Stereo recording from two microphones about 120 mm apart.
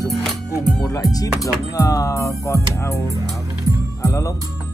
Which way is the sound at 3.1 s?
30° right (ahead or behind).